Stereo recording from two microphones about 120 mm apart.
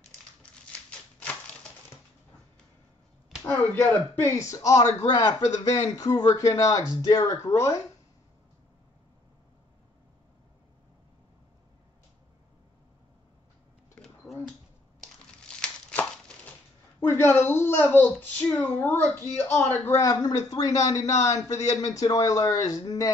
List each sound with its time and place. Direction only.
0.7 s typewriter: 10° left (ahead or behind)
3.4 s a man's voice: 20° left (ahead or behind)
13.9 s a sound: centre (ahead or behind)
15.4 s crumpling: 10° left (ahead or behind)
17.0 s a man's voice: 20° left (ahead or behind)